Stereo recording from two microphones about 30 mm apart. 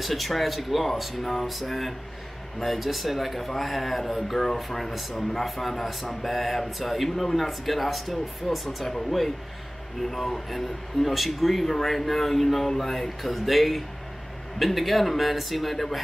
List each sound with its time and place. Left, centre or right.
0.0 s speech: centre
10.1 s speech: centre
13.2 s speech: centre